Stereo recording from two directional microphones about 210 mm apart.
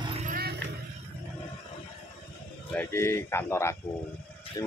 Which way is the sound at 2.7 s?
10° left (ahead or behind).